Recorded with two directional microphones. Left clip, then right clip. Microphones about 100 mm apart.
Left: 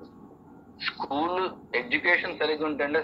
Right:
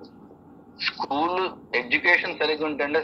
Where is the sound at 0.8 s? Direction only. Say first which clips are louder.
Right 4 dB; 20° right (ahead or behind).